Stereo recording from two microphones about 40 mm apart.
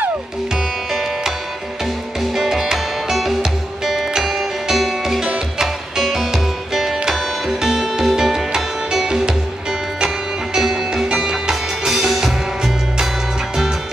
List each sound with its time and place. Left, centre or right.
2.3 s music: centre